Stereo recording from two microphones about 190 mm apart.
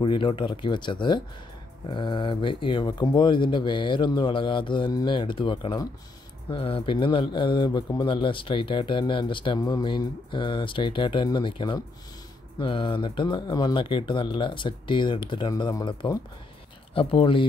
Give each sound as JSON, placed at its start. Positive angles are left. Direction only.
{"t": 0.0, "sound": "speech", "side_deg": 25}